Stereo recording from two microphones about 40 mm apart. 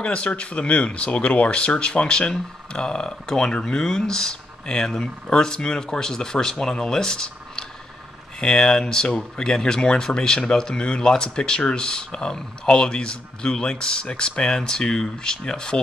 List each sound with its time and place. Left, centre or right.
0.0 s speech: left